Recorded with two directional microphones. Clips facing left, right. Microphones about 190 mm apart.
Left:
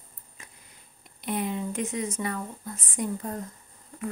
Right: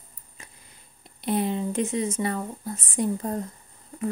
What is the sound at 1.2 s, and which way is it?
Speech, 30° right (ahead or behind).